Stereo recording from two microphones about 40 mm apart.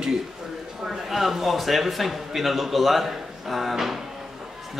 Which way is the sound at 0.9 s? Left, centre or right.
Centre.